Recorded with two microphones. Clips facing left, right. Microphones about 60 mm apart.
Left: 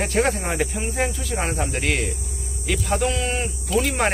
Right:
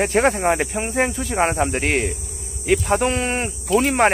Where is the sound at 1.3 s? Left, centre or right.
Right.